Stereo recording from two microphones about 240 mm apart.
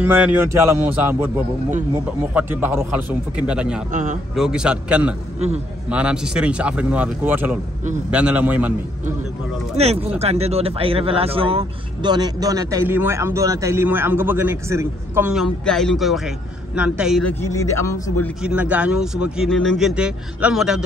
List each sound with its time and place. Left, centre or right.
0.0 s speech: centre
2.3 s speech: centre
3.9 s speech: right
4.4 s speech: centre
9.8 s speech: right; by 17.9 s centre
18.4 s speech: centre